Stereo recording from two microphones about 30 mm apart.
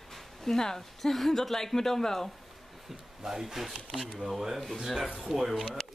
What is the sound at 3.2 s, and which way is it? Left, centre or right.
Speech, centre.